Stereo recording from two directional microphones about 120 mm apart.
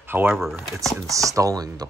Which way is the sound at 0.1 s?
20° right (ahead or behind).